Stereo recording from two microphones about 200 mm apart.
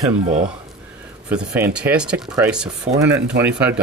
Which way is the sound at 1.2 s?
10° right (ahead or behind).